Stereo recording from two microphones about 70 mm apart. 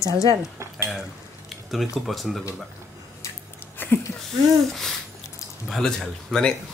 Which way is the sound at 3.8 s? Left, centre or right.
Left.